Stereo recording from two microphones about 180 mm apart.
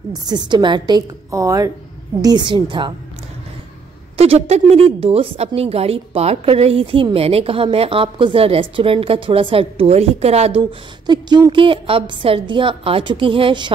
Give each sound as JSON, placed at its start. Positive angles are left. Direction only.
{"t": 0.1, "sound": "a woman's voice", "side_deg": -20}
{"t": 4.2, "sound": "a woman's voice", "side_deg": -35}
{"t": 10.6, "sound": "a woman's voice", "side_deg": -25}